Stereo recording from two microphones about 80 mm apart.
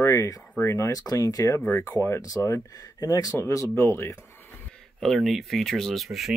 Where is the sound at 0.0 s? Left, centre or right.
Left.